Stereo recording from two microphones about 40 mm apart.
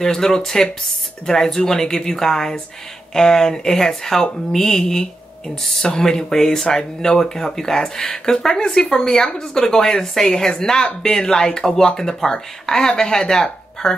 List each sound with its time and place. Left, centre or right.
0.0 s speech: centre